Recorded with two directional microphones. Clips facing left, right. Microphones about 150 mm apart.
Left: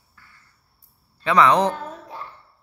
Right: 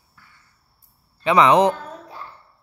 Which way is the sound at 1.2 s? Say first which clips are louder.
Right 2 dB; 15° right (ahead or behind).